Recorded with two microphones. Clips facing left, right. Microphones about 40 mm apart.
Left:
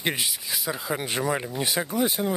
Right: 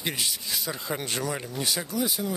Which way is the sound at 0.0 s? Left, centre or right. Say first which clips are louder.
Left 3 dB; left.